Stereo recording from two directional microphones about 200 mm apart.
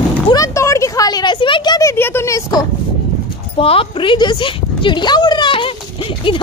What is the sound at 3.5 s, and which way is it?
Speech, 30° left (ahead or behind).